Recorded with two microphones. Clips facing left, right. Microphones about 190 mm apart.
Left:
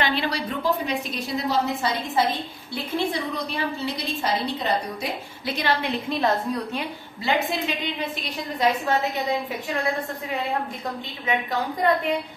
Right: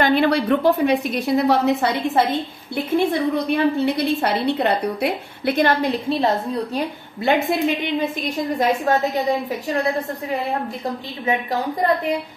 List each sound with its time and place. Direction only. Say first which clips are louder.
0.0 s a woman's voice: right 8 dB; 55° right (ahead or behind)
2.7 s a woman's voice: right 7 dB; 50° right (ahead or behind); by 6.8 s 30° right (ahead or behind)
6.8 s a woman's voice: right 7 dB; 50° right (ahead or behind)